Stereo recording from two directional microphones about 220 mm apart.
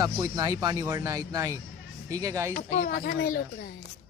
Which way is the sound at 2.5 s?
35° left (ahead or behind).